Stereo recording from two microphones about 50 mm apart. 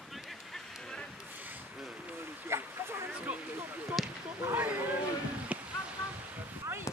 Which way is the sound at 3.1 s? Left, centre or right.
Right.